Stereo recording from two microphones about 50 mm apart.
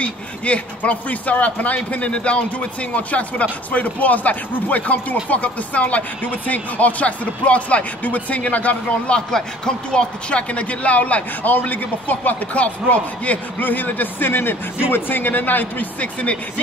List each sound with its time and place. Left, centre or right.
0.0 s a man's voice: left